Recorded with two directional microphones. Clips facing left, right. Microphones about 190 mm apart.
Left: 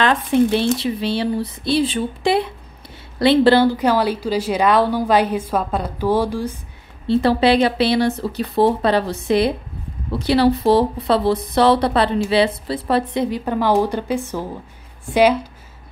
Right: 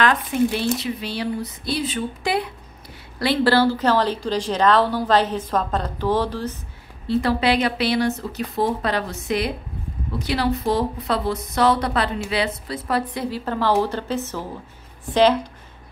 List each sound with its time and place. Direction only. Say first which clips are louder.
0.0 s a woman's voice: left 4 dB; 25° left (ahead or behind); by 6.5 s 10° left (ahead or behind)
7.1 s a woman's voice: left 5 dB; 30° left (ahead or behind); by 15.3 s 10° left (ahead or behind)